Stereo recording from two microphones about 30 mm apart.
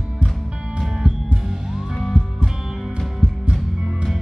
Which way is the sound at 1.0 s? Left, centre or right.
Right.